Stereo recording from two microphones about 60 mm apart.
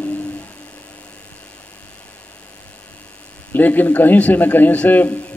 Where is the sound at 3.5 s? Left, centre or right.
Left.